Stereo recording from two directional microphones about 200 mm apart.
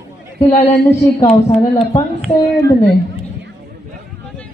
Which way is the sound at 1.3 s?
30° left (ahead or behind).